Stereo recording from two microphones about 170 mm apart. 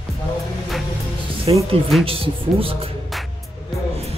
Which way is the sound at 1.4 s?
35° right (ahead or behind).